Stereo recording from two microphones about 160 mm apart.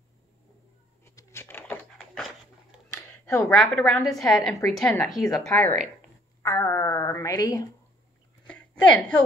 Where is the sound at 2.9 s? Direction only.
20° left (ahead or behind).